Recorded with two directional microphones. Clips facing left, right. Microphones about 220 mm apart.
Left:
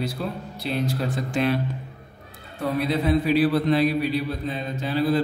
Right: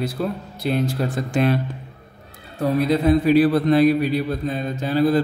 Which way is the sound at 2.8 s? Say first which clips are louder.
Right 5 dB; 45° right (ahead or behind).